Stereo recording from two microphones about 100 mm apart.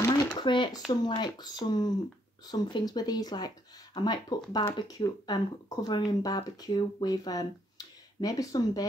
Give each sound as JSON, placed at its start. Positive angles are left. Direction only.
{"t": 0.4, "sound": "speech", "side_deg": 50}